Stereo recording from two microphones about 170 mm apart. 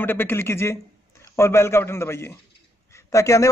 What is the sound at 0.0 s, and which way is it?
A man's voice, 10° left (ahead or behind).